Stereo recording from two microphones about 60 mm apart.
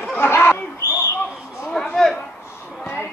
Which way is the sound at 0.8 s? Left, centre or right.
Left.